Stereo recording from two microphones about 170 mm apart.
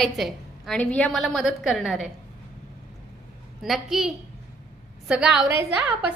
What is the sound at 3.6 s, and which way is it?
Speech, centre (ahead or behind).